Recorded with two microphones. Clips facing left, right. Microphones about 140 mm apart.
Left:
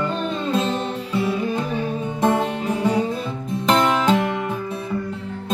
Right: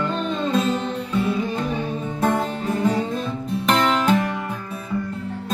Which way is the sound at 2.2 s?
20° left (ahead or behind).